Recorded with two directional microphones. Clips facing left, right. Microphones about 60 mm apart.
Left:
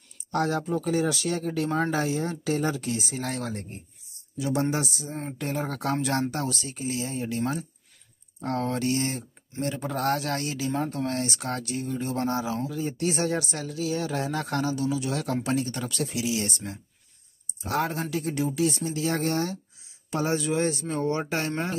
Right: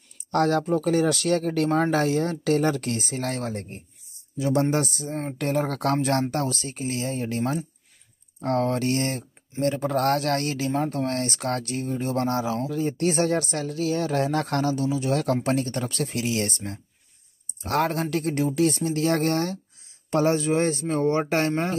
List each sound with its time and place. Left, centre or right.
0.3 s speech: right